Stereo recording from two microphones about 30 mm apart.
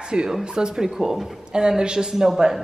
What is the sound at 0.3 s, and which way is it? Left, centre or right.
Speech, centre.